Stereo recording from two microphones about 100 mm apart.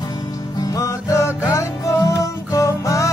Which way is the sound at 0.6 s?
35° left (ahead or behind).